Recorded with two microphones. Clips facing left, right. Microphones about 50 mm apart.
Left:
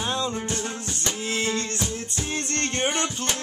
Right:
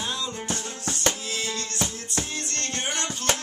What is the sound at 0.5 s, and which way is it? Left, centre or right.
Music, right.